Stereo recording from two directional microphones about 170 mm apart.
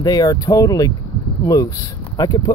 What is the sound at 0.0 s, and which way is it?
Speech, 20° left (ahead or behind).